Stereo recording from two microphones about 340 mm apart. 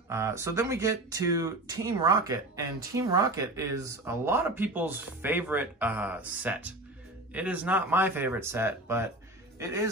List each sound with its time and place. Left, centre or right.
0.1 s speech: centre